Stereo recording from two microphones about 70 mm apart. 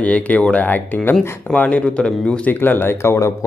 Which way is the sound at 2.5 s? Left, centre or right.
Left.